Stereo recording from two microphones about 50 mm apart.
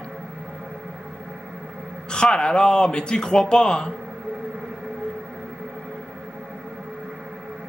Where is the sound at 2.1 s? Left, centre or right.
Centre.